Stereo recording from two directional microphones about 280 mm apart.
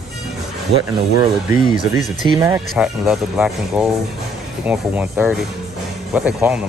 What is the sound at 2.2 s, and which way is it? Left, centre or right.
Speech, centre.